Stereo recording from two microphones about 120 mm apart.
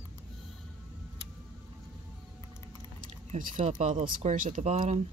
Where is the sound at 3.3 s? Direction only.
80° right.